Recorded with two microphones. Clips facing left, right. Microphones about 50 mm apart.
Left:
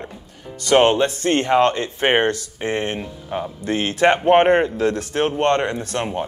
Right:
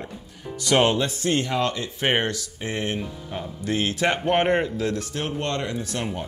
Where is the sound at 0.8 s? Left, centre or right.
Left.